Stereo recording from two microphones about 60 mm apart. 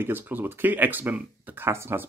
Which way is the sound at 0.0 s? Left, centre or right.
Right.